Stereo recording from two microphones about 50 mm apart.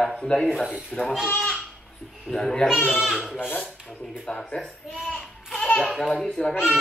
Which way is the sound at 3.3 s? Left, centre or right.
Centre.